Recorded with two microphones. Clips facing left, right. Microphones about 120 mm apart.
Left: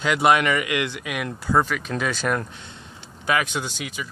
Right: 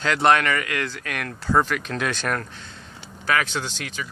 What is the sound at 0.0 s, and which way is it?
Speech, 10° left (ahead or behind).